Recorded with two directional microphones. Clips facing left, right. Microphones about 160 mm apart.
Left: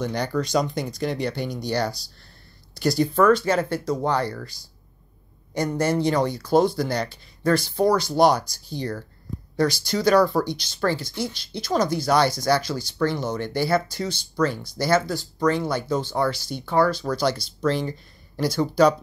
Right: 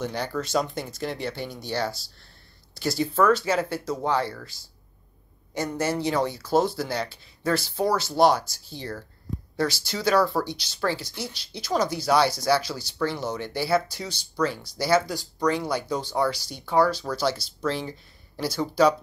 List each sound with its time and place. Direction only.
0.0 s speech: 5° right (ahead or behind)